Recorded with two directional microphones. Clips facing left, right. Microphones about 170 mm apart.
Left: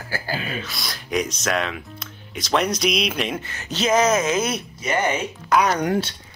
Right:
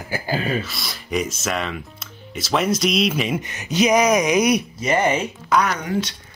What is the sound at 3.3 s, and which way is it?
Speech, 15° right (ahead or behind).